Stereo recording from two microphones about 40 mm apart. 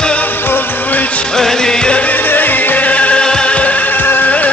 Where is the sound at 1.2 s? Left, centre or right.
Centre.